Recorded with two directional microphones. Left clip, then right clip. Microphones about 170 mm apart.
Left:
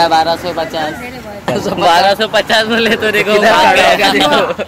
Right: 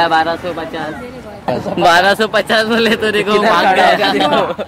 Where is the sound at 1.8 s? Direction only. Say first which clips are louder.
Even; 70° right (ahead or behind); by 3.1 s 45° right (ahead or behind).